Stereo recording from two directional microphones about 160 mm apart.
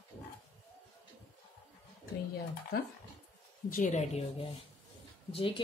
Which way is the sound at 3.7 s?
50° left (ahead or behind).